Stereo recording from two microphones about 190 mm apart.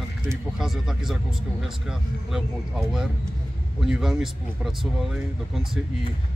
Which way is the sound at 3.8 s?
5° right (ahead or behind).